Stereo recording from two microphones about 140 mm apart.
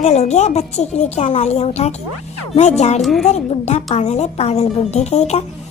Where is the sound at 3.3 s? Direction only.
55° left (ahead or behind).